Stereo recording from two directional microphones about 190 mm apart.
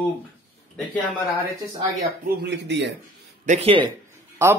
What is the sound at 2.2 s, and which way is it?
Speech, 60° right (ahead or behind).